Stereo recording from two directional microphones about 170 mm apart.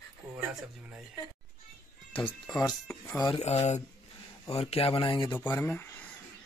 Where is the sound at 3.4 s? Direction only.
40° left (ahead or behind).